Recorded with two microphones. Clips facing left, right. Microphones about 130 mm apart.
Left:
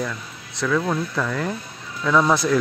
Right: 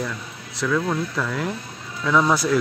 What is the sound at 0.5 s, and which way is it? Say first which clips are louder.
Speech: left 1 dB; centre (ahead or behind).